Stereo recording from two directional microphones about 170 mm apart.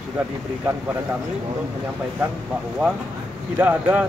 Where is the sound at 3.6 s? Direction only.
10° right (ahead or behind).